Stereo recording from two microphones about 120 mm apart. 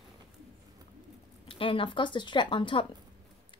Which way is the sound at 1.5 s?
50° left (ahead or behind).